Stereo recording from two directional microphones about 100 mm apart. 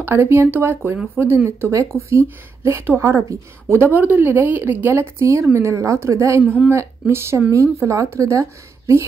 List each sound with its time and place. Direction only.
0.0 s speech: 25° right (ahead or behind)
3.8 s speech: 15° right (ahead or behind)